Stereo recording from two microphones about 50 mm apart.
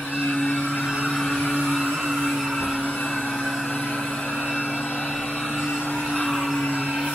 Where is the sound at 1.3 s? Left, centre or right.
Centre.